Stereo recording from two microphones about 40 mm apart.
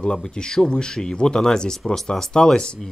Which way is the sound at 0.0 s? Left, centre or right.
Centre.